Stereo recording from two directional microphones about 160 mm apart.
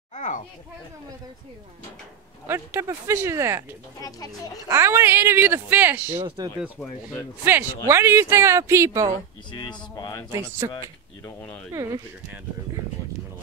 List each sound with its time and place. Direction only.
0.1 s a sound: 50° left (ahead or behind)
2.4 s speech: 15° right (ahead or behind)
4.6 s speech: 15° right (ahead or behind)
6.1 s speech: 30° right (ahead or behind)
7.4 s speech: 15° right (ahead or behind)
9.5 s speech: 25° left (ahead or behind)
10.6 s speech: 20° right (ahead or behind)